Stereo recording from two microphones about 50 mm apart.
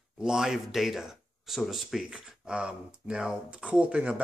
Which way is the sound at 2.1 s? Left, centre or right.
Centre.